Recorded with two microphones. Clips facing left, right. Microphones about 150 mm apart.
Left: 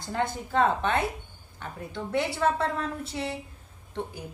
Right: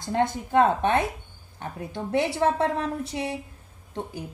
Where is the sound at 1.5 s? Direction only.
50° right (ahead or behind).